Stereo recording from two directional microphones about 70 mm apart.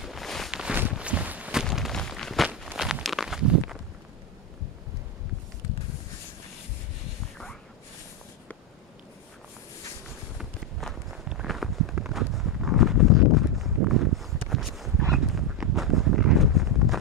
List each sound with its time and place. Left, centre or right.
0.0 s walk: centre
0.5 s walk: centre
1.7 s a sound: centre
2.4 s walk: centre
10.3 s walk: centre
15.1 s a sound: centre